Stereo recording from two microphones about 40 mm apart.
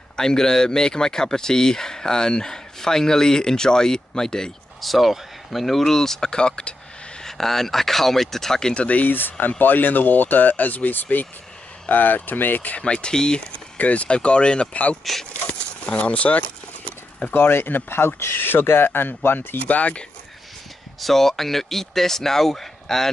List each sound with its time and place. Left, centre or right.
0.1 s speech: centre
4.8 s speech: centre; by 6.7 s left
7.2 s speech: centre
9.0 s speech: left
12.7 s speech: left
13.7 s speech: left
14.0 s speech: left
15.3 s a sound: left
17.3 s speech: left
19.7 s speech: left
21.0 s speech: centre